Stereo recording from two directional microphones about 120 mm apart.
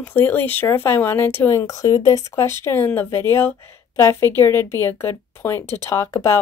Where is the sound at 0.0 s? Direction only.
15° left (ahead or behind).